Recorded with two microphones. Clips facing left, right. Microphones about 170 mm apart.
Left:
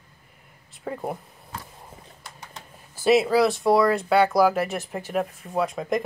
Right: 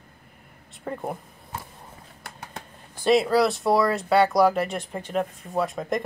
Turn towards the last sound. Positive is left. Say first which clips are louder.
# left 1 dB
turn(degrees=0)  # may be behind; listen again after turning